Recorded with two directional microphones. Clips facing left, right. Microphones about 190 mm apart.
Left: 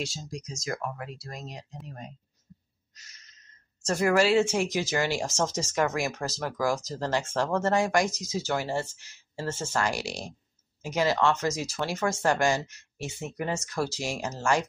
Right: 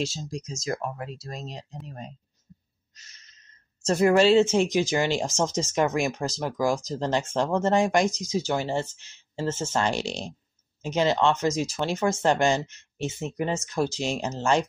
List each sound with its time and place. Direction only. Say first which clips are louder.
0.0 s speech: right 5 dB; 25° right (ahead or behind)
3.8 s speech: right 4 dB; 25° right (ahead or behind)